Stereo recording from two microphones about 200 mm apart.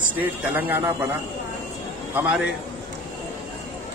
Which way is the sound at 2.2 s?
5° right (ahead or behind).